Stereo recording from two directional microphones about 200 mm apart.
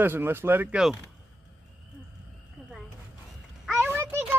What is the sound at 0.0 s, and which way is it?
Speech, 10° right (ahead or behind).